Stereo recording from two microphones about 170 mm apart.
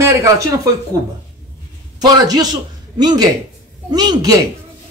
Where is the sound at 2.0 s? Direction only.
25° right (ahead or behind).